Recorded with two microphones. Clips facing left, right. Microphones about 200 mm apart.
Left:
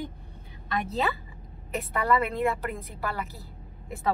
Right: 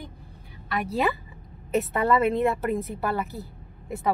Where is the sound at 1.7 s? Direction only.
25° right (ahead or behind).